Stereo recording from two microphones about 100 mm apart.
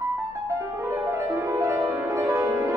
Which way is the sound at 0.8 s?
30° right (ahead or behind).